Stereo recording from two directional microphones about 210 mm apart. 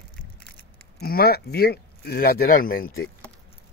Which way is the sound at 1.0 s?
45° left (ahead or behind).